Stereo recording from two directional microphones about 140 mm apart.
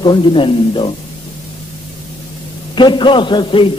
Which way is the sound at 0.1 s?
35° left (ahead or behind).